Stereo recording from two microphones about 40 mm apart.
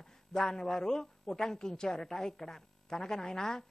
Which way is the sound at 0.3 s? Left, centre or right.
Centre.